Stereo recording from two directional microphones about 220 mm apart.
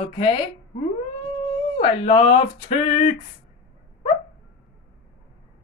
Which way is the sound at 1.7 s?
25° left (ahead or behind).